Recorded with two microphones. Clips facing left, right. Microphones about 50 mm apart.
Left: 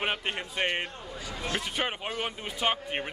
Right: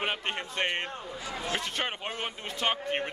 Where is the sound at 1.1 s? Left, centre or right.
Right.